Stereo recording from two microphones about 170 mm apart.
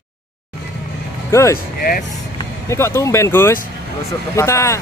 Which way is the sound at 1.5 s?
60° left (ahead or behind).